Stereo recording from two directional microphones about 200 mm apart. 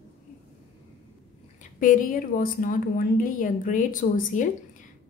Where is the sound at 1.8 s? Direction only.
40° left (ahead or behind).